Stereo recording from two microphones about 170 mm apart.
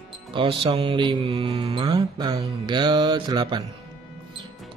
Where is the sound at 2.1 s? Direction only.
20° right (ahead or behind).